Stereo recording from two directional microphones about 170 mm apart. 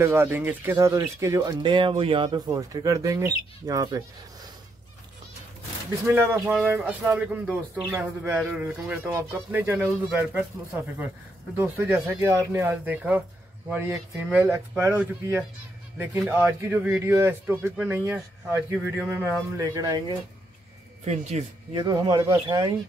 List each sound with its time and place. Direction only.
0.0 s speech: 15° right (ahead or behind)
6.0 s speech: 15° right (ahead or behind)
11.5 s speech: 10° right (ahead or behind)
21.0 s speech: 40° right (ahead or behind)
21.7 s speech: 25° right (ahead or behind)